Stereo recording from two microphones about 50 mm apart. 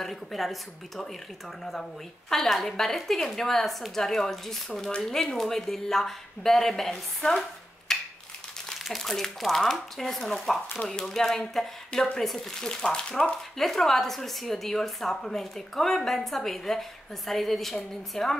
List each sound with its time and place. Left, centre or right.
0.0 s speech: centre
7.9 s a sound: centre
8.7 s speech: centre